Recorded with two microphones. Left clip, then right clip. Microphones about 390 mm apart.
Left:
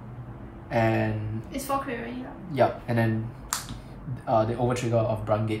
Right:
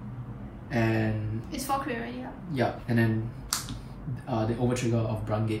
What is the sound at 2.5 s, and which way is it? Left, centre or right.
Speech, centre.